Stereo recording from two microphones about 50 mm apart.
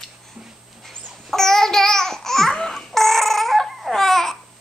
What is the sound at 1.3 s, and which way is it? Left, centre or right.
Babbling, centre.